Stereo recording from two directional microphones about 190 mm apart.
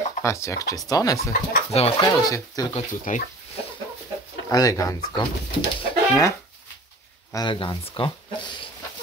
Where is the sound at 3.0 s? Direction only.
45° left (ahead or behind).